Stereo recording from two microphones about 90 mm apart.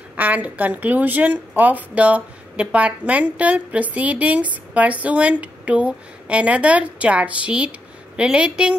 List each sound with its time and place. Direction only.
0.1 s a woman's voice: 15° right (ahead or behind)